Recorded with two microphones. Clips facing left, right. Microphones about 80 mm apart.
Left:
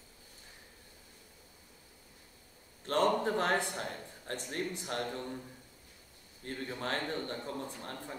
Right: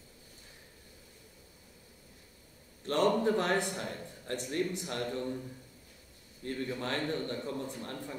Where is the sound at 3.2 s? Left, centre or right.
Left.